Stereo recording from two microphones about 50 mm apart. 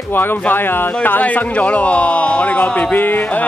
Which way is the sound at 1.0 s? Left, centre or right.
Left.